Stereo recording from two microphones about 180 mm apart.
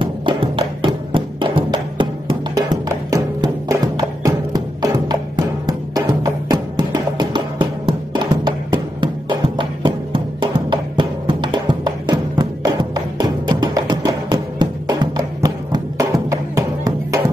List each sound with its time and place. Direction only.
0.0 s music: 30° right (ahead or behind)